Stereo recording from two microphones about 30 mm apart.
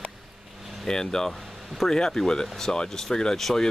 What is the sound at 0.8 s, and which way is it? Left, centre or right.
Speech, left.